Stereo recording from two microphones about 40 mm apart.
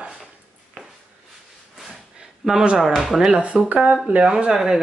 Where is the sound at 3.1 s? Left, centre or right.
Centre.